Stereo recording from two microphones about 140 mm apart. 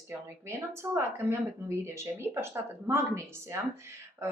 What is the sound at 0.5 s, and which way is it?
Speech, 20° right (ahead or behind).